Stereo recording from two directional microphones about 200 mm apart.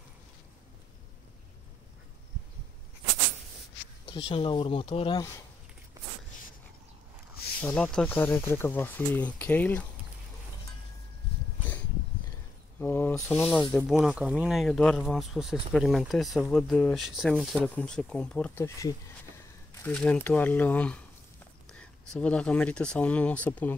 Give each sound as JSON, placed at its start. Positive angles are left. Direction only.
{"t": 4.0, "sound": "speech", "side_deg": 25}
{"t": 7.6, "sound": "speech", "side_deg": 5}
{"t": 12.8, "sound": "speech", "side_deg": 10}
{"t": 22.2, "sound": "speech", "side_deg": 5}